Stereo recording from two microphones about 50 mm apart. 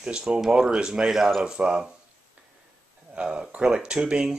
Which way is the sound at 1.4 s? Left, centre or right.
Centre.